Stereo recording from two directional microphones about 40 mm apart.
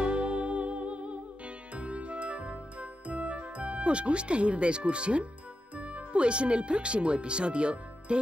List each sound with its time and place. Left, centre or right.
0.0 s music: right
5.8 s speech: right